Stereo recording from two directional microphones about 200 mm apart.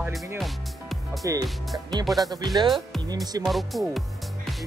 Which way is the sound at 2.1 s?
Centre (ahead or behind).